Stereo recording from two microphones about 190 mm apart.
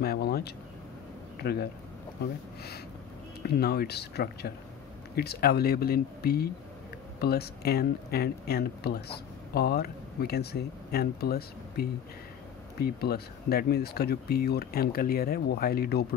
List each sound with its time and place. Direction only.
0.0 s speech: 55° left (ahead or behind)
3.4 s speech: 55° left (ahead or behind)